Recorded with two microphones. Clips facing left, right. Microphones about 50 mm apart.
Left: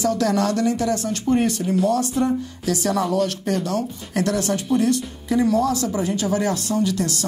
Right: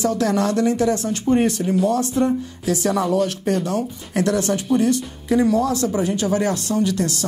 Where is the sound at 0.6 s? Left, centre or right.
Right.